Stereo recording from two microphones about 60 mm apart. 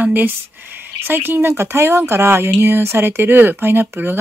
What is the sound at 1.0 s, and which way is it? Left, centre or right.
Speech, right.